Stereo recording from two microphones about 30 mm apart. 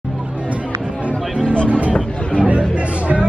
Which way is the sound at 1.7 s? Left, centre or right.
Right.